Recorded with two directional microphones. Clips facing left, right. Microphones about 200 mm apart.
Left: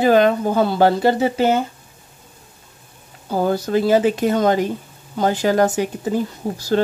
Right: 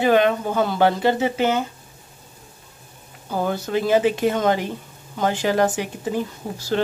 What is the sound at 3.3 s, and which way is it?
Speech, 35° left (ahead or behind).